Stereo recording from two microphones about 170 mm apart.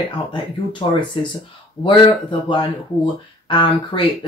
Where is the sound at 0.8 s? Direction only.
25° left (ahead or behind).